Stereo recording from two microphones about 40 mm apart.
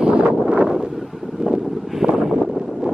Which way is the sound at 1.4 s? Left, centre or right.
Centre.